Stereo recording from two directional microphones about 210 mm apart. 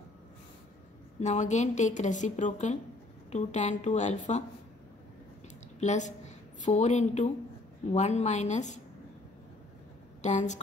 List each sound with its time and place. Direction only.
1.2 s speech: 35° left (ahead or behind)
5.8 s a woman's voice: 35° left (ahead or behind)
10.2 s speech: 35° left (ahead or behind)